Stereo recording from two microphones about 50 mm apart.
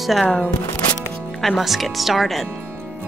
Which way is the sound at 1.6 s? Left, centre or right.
Centre.